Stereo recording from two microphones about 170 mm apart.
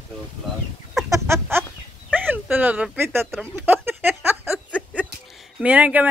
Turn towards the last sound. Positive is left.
turn(degrees=-10)  # may be behind; listen again after turning